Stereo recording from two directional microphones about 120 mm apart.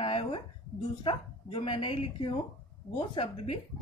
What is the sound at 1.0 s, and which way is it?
Speech, 45° left (ahead or behind).